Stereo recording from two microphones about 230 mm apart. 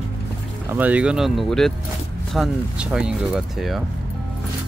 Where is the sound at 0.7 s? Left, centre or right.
Centre.